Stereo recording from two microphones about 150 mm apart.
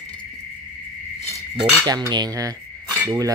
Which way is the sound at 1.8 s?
25° right (ahead or behind).